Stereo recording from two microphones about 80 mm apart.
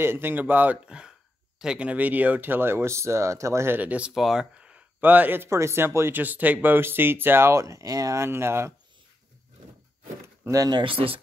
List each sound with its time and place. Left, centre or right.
0.0 s speech: right
4.1 s speech: centre; by 5.5 s right
5.5 s speech: right
10.5 s speech: right